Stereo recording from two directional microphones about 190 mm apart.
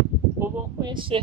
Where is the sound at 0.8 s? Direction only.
25° right (ahead or behind).